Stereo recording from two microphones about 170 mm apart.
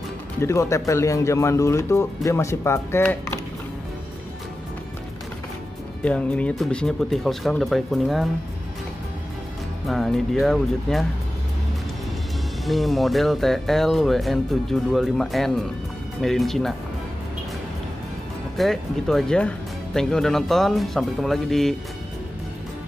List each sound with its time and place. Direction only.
0.4 s speech: 15° left (ahead or behind)
6.0 s speech: 10° left (ahead or behind)
9.8 s speech: centre (ahead or behind)
12.6 s speech: centre (ahead or behind)
18.6 s speech: centre (ahead or behind)